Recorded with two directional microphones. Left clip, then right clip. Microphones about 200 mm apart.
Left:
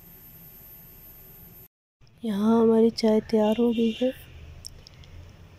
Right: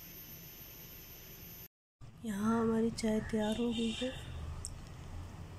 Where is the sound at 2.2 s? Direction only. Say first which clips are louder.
Left 12 dB; 20° left (ahead or behind).